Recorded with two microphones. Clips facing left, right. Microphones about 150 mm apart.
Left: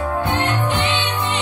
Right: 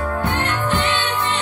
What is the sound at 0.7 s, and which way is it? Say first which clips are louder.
Music: even; 15° left (ahead or behind).